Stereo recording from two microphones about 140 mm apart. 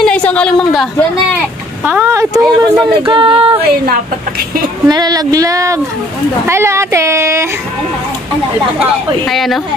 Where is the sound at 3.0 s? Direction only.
35° right (ahead or behind).